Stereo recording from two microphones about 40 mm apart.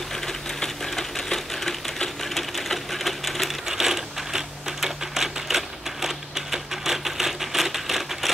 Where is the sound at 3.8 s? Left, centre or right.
Centre.